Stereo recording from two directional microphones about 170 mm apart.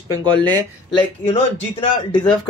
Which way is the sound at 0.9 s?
30° left (ahead or behind).